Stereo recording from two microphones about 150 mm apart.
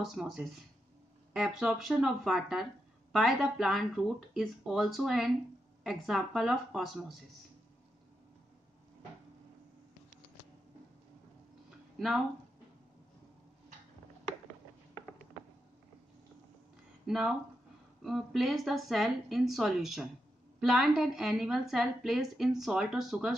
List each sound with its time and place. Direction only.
0.0 s speech: centre (ahead or behind)
17.0 s speech: 5° right (ahead or behind)